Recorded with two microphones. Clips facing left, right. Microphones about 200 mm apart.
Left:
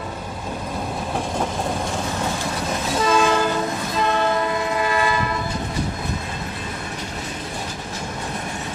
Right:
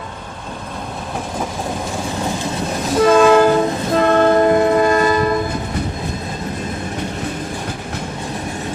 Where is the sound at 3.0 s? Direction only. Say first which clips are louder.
Right 9 dB; 55° right (ahead or behind).